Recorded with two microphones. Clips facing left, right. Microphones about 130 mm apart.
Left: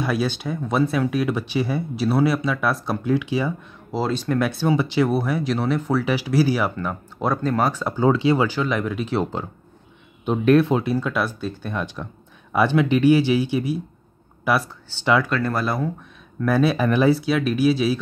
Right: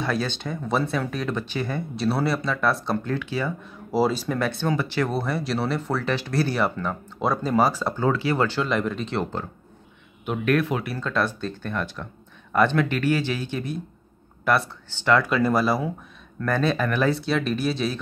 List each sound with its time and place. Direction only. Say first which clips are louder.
0.0 s speech: left 3 dB; 10° left (ahead or behind)
3.9 s speech: right 1 dB; 5° right (ahead or behind)
4.4 s speech: left 6 dB; 5° left (ahead or behind)
5.1 s speech: left 4 dB; centre (ahead or behind)
7.9 s speech: left 5 dB; 20° left (ahead or behind)
8.4 s speech: left 1 dB; 5° left (ahead or behind)
10.2 s speech: left 6 dB; 25° left (ahead or behind)
11.0 s speech: left 2 dB; 10° left (ahead or behind)
15.2 s speech: right 2 dB; 5° right (ahead or behind)
16.3 s speech: left 4 dB; 5° left (ahead or behind)
16.8 s speech: left 5 dB; 20° left (ahead or behind)
17.1 s speech: left 4 dB; 5° left (ahead or behind)